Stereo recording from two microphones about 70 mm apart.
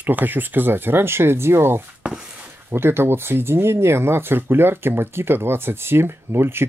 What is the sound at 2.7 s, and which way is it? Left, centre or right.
Speech, right.